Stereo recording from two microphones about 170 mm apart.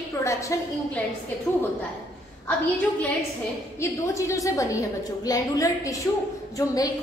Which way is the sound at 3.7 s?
15° left (ahead or behind).